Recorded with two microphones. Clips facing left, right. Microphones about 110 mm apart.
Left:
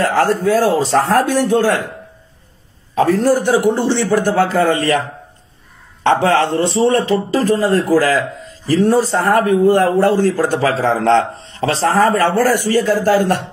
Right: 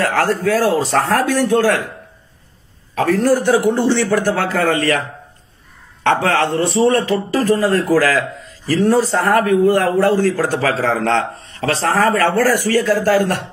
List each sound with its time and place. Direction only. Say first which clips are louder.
0.0 s speech: left 2 dB; 25° left (ahead or behind)
2.9 s speech: left 2 dB; 25° left (ahead or behind)
6.0 s speech: left 2 dB; 25° left (ahead or behind)